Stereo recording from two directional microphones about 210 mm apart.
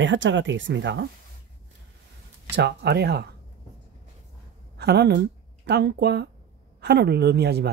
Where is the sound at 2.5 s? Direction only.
55° right (ahead or behind).